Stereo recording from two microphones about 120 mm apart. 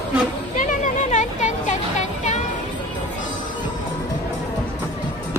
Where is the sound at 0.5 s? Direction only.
90° left.